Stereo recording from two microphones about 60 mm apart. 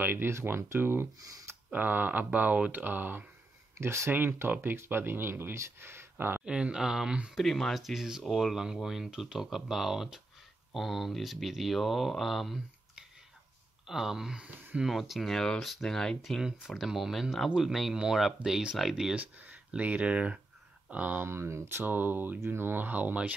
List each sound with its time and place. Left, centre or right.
0.0 s speech: right
3.7 s speech: right
4.1 s speech: right
6.4 s speech: centre
7.3 s speech: centre
13.8 s speech: centre
19.1 s speech: right
21.3 s speech: right
22.4 s speech: right